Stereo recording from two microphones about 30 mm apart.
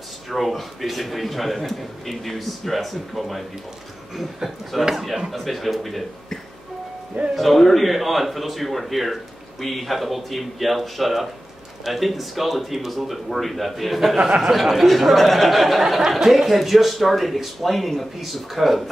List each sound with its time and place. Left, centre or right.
0.3 s a man's voice: centre
4.9 s a man's voice: centre
7.3 s a man's voice: centre
14.2 s speech: centre
14.5 s a man's voice: centre
16.0 s a man's voice: centre